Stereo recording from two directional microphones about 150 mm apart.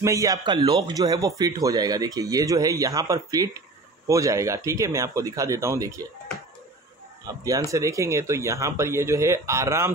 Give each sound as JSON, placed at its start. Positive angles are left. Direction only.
{"t": 0.0, "sound": "speech", "side_deg": -20}
{"t": 7.4, "sound": "speech", "side_deg": -20}